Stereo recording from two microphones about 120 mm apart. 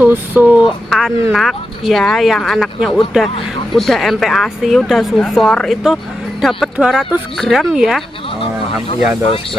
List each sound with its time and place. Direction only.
0.0 s speech: 15° right (ahead or behind)
0.7 s a sound: centre (ahead or behind)
1.3 s a woman's voice: centre (ahead or behind)
8.4 s speech: 50° left (ahead or behind)